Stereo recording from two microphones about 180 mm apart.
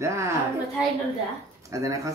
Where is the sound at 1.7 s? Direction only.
15° right (ahead or behind).